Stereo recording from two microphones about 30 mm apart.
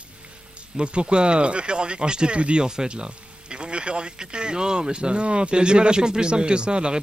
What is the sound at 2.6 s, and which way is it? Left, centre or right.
Speech, right.